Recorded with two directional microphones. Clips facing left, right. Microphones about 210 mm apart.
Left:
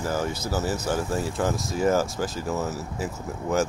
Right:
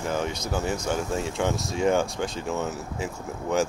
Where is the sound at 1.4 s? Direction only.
Centre (ahead or behind).